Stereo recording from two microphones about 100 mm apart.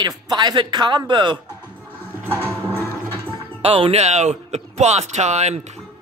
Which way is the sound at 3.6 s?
70° right (ahead or behind).